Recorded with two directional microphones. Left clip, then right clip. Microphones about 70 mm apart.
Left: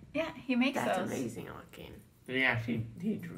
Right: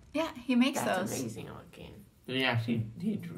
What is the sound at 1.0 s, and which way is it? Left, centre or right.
Speech, centre.